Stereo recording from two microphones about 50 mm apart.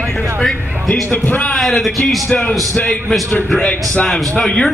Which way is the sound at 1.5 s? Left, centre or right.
Centre.